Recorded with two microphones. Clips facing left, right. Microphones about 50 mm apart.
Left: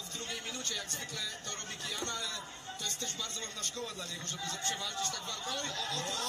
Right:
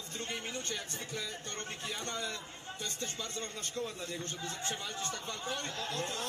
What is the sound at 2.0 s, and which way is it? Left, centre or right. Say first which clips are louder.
Speech: right 2 dB; right.